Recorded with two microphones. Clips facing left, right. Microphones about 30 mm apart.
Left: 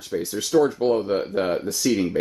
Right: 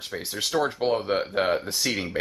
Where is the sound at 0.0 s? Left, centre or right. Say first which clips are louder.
Left 3 dB; right.